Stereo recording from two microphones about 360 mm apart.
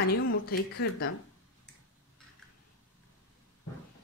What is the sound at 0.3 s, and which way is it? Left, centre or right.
Speech, left.